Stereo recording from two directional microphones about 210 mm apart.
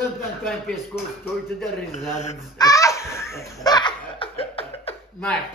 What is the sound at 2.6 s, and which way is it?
Laughter, 15° left (ahead or behind).